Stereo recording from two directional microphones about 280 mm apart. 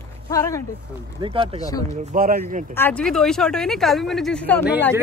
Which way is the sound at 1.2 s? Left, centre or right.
Centre.